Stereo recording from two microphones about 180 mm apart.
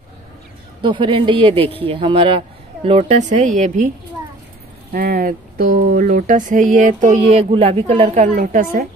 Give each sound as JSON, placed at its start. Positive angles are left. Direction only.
{"t": 0.8, "sound": "speech", "side_deg": -30}
{"t": 4.9, "sound": "speech", "side_deg": -60}